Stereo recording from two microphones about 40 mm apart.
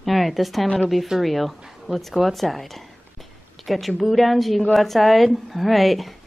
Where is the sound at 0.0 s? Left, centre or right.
Centre.